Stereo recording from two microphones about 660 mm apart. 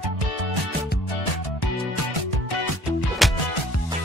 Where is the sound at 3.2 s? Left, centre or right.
Centre.